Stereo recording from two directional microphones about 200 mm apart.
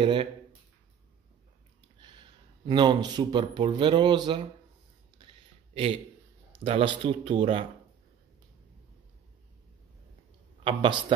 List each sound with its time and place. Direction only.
0.0 s speech: 25° right (ahead or behind)
2.0 s speech: 25° right (ahead or behind)
6.6 s speech: 25° right (ahead or behind)
10.6 s speech: 25° right (ahead or behind)